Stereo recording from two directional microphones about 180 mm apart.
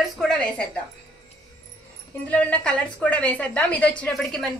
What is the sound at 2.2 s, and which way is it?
A woman's voice, 10° left (ahead or behind).